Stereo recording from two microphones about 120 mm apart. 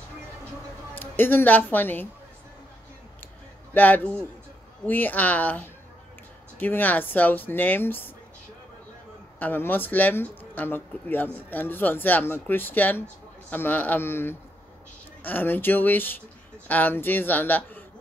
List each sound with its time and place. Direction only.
0.9 s speech: 15° left (ahead or behind)
3.7 s speech: 15° left (ahead or behind)
9.4 s speech: 15° left (ahead or behind)